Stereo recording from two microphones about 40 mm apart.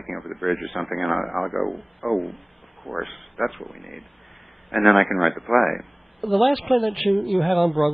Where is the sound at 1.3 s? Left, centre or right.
Left.